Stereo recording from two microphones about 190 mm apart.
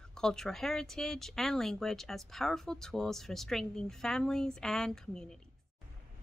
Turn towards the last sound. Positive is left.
turn(degrees=5)  # may be behind; listen again after turning